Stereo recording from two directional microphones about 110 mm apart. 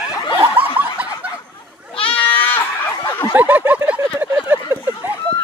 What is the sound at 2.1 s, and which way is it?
Goat, 15° left (ahead or behind).